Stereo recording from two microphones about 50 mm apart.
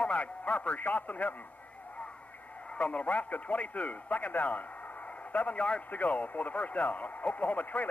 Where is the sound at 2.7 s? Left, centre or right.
Left.